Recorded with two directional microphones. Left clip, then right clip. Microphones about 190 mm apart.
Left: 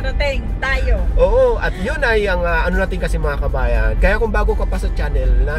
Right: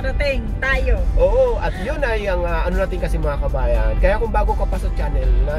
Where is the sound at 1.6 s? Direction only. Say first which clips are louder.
Left 4 dB; 15° left (ahead or behind).